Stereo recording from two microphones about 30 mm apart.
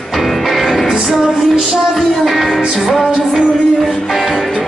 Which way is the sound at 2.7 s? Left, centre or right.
Centre.